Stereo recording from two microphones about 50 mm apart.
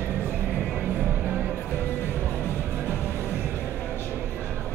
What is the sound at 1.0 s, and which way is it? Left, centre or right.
Music, right.